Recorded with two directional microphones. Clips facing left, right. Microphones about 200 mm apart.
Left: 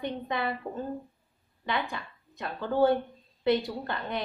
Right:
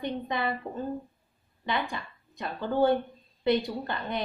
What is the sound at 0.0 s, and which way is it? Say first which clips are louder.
Speech: right 1 dB; 5° left (ahead or behind).